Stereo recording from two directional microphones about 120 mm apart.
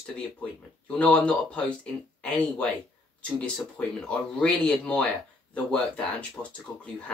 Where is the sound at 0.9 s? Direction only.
10° left (ahead or behind).